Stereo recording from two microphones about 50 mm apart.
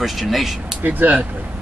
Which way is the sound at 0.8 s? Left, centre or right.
Right.